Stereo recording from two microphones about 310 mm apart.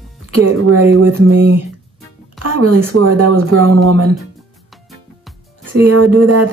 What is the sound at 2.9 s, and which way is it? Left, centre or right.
Speech, right.